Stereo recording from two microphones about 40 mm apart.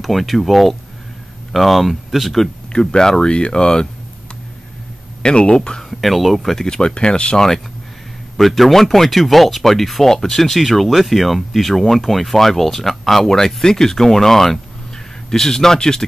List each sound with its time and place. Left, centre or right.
0.0 s speech: centre
2.7 s speech: centre
5.2 s speech: left
5.8 s speech: centre
6.7 s speech: left
7.3 s speech: centre
8.4 s speech: centre